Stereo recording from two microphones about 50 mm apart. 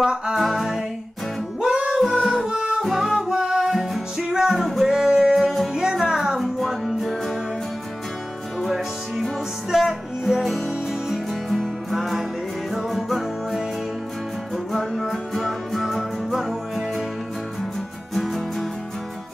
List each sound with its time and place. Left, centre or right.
0.0 s music: centre
0.4 s music: centre
1.6 s music: centre
2.8 s music: centre
3.2 s music: centre
8.6 s music: centre
18.1 s music: centre